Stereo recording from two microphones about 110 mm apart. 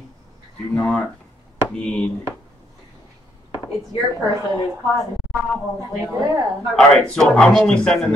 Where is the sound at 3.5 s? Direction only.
40° left (ahead or behind).